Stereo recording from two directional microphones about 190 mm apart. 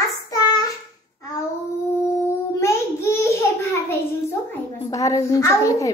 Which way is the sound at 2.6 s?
15° left (ahead or behind).